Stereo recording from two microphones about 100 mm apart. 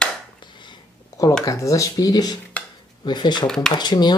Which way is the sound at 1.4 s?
35° left (ahead or behind).